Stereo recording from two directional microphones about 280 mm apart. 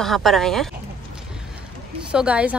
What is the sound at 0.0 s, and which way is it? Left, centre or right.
Speech, centre.